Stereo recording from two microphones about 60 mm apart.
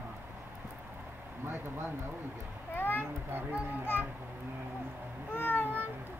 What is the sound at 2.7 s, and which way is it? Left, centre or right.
Speech, left.